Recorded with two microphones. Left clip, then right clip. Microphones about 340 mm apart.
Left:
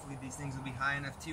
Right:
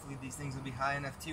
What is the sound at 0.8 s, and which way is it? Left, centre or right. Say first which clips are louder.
Speech: even; centre.